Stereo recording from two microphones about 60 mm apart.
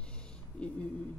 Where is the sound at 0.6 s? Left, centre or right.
Centre.